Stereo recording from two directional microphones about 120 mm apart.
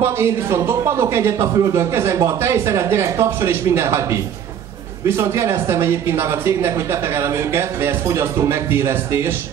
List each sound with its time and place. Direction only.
0.0 s speech: 25° right (ahead or behind)